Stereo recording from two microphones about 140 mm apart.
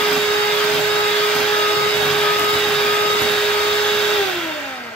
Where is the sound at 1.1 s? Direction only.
5° left (ahead or behind).